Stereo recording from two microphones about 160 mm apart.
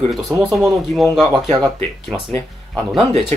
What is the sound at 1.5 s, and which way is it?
Speech, 30° right (ahead or behind).